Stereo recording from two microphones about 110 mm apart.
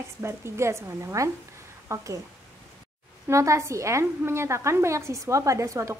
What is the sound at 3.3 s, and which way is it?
A woman's voice, 25° right (ahead or behind).